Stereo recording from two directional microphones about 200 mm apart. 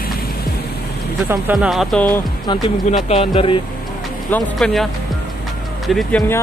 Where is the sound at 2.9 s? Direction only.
30° left (ahead or behind).